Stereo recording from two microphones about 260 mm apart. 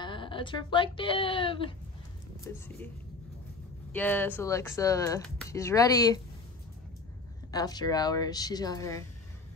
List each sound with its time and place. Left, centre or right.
0.0 s speech: centre
2.5 s speech: centre
3.9 s speech: centre
7.5 s speech: centre